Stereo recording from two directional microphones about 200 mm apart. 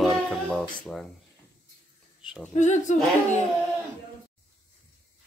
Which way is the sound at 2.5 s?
35° left (ahead or behind).